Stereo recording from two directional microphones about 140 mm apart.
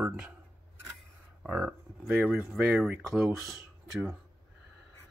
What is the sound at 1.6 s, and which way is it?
Speech, centre (ahead or behind).